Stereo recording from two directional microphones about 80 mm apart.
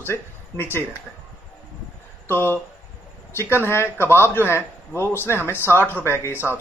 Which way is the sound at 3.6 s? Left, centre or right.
Left.